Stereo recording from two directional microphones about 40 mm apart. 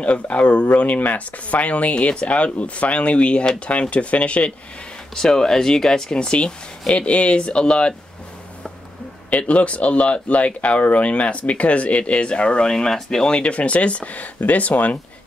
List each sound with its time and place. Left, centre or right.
0.0 s speech: left
5.1 s speech: centre
9.4 s speech: left
12.7 s speech: centre
13.3 s speech: left